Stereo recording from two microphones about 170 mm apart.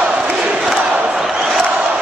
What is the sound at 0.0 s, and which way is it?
Crowd, 5° right (ahead or behind).